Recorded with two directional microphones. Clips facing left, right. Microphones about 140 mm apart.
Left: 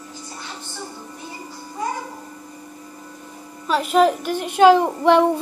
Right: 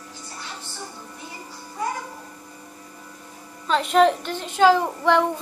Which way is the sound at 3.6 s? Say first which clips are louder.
Left 1 dB; 5° left (ahead or behind).